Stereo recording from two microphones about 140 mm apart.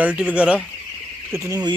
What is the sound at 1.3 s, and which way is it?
Speech, 25° right (ahead or behind).